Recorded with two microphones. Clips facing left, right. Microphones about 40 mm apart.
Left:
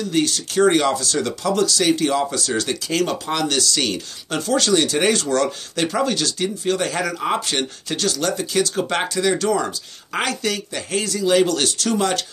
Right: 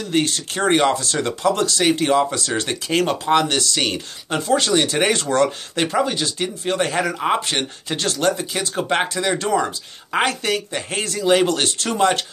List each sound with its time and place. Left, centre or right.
0.1 s speech: right